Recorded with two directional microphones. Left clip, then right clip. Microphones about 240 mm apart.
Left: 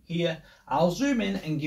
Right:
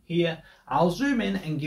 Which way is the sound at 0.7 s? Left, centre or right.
Right.